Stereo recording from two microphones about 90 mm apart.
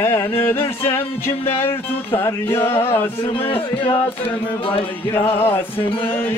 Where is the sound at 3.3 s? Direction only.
90° left.